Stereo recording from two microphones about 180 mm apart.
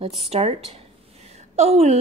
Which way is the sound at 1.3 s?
40° right (ahead or behind).